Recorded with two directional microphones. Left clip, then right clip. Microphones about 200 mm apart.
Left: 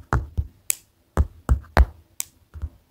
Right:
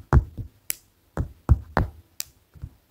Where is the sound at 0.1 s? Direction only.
5° left (ahead or behind).